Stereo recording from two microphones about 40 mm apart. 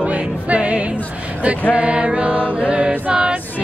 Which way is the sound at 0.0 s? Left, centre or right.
Right.